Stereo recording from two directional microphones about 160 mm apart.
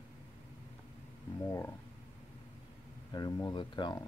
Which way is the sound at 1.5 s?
15° left (ahead or behind).